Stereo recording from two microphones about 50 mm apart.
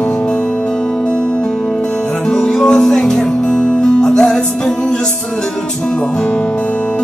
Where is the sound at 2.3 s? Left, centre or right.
Centre.